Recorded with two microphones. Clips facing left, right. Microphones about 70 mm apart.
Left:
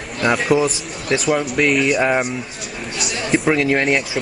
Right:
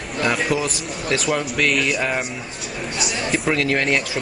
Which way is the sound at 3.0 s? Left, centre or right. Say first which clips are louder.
Left 4 dB; centre.